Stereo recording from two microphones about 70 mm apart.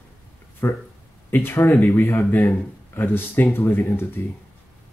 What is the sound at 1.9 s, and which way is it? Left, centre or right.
Speech, left.